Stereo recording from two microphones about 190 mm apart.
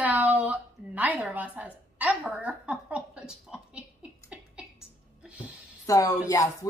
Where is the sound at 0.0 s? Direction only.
10° right (ahead or behind).